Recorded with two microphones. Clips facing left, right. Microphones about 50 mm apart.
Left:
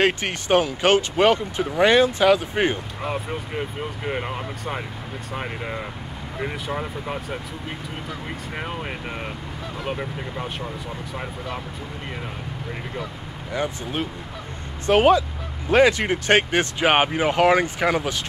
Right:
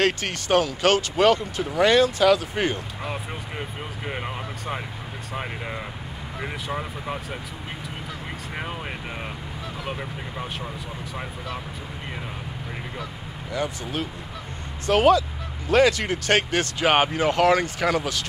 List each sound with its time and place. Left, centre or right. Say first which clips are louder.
0.0 s speech: left 2 dB; left
3.0 s speech: left 4 dB; centre
8.5 s speech: left 2 dB; centre
9.8 s speech: left 5 dB; centre
13.5 s speech: left 2 dB; left